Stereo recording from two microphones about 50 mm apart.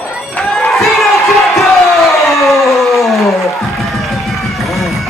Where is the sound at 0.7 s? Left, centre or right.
Centre.